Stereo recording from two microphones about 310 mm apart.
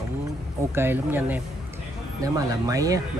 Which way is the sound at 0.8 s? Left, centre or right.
Centre.